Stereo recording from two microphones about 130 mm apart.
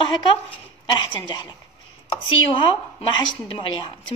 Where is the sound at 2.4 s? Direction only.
40° left (ahead or behind).